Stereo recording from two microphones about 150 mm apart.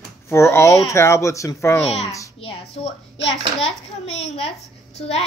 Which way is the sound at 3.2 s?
45° left (ahead or behind).